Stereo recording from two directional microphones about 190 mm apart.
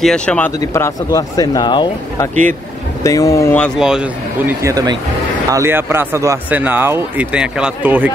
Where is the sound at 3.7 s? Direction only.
5° right (ahead or behind).